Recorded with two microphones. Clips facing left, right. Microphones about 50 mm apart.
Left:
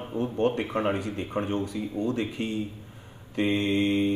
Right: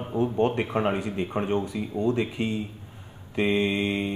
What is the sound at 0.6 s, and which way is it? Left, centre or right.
Mantra, centre.